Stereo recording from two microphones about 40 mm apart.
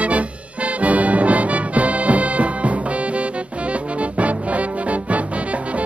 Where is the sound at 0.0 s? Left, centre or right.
Right.